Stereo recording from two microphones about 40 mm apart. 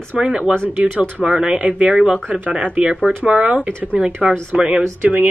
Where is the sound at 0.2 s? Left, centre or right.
Right.